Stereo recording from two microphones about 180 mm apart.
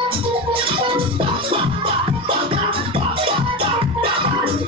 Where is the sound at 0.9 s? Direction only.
30° right (ahead or behind).